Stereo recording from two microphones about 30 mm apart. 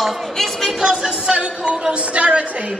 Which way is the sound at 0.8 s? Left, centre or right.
Right.